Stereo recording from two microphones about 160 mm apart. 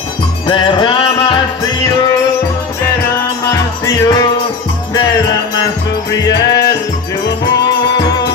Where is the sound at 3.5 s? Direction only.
20° left (ahead or behind).